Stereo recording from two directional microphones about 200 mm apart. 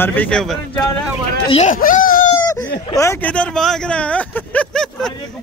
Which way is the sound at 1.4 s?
30° left (ahead or behind).